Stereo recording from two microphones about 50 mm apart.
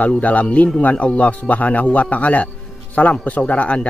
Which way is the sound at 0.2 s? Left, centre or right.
Left.